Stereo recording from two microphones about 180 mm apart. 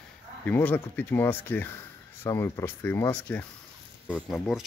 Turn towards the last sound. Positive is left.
turn(degrees=0)  # may be behind; listen again after turning